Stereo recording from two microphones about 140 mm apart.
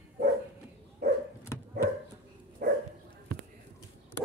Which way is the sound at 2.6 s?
90° right.